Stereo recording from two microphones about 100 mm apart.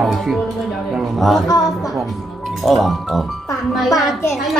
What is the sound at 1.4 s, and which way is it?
Speech, 40° left (ahead or behind).